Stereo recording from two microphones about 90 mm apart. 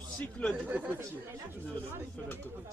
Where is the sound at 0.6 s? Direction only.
15° right (ahead or behind).